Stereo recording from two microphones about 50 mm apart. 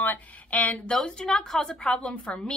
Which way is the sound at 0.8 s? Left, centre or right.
Centre.